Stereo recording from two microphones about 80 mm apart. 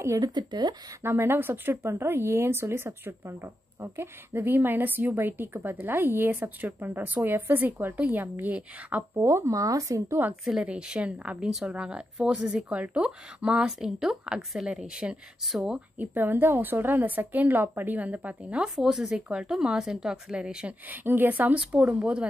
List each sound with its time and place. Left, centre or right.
0.2 s speech: right
1.0 s speech: right
9.1 s speech: right
10.6 s a woman's voice: centre
16.0 s a woman's voice: right
20.9 s speech: right
21.5 s a woman's voice: centre